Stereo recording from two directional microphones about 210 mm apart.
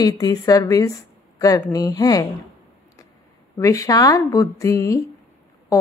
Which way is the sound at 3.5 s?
15° left (ahead or behind).